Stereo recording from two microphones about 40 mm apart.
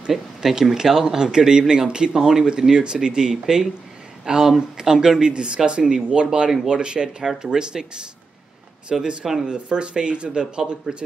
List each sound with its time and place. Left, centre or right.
0.1 s speech: centre
4.3 s speech: centre
9.2 s speech: centre
9.5 s speech: right